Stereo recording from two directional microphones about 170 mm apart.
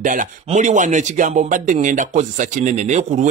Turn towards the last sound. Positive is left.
turn(degrees=-45)  # may be behind; listen again after turning